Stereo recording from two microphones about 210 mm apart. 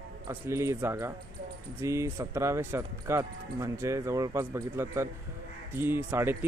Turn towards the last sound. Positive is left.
turn(degrees=-10)  # may be behind; listen again after turning